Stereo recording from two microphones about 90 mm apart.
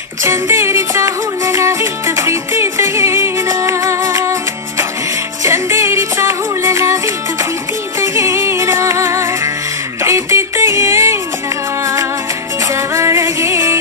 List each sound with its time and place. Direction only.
0.2 s music: 30° right (ahead or behind)
8.0 s music: 35° right (ahead or behind)
12.7 s music: 30° right (ahead or behind)